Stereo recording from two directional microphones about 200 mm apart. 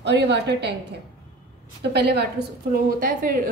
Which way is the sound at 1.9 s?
55° right (ahead or behind).